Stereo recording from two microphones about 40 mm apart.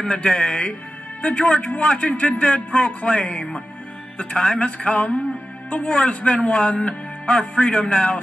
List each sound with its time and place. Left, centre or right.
0.0 s a man's voice: left
3.3 s a man's voice: centre